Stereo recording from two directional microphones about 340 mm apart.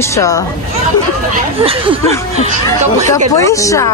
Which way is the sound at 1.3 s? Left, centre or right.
Centre.